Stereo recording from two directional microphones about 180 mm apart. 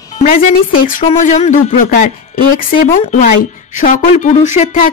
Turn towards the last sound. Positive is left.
turn(degrees=40)  # may be behind; listen again after turning